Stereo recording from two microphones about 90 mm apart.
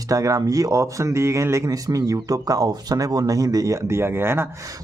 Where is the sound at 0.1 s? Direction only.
40° right (ahead or behind).